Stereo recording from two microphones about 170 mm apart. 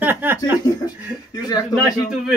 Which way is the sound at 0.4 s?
20° left (ahead or behind).